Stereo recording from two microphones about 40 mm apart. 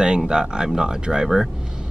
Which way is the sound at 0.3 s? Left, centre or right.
Centre.